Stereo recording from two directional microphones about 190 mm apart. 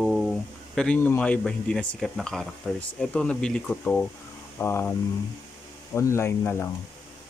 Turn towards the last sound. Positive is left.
turn(degrees=15)  # may be behind; listen again after turning